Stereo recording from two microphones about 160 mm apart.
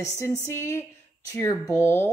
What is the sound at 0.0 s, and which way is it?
A woman's voice, 20° left (ahead or behind).